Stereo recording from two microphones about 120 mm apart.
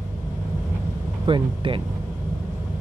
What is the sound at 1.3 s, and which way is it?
Speech, 45° right (ahead or behind).